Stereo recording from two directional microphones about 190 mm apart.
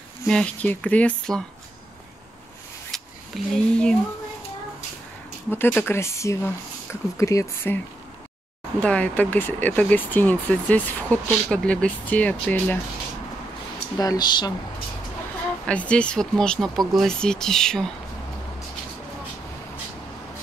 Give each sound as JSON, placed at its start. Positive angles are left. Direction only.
{"t": 0.3, "sound": "speech", "side_deg": 5}
{"t": 2.9, "sound": "a sound", "side_deg": 5}
{"t": 5.5, "sound": "speech", "side_deg": 10}
{"t": 13.9, "sound": "speech", "side_deg": 20}
{"t": 15.6, "sound": "speech", "side_deg": 5}